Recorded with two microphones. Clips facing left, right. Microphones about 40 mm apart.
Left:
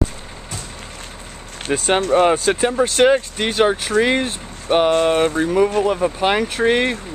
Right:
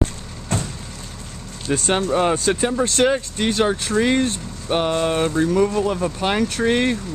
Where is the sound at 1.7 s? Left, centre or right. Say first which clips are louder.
Left 1 dB; centre.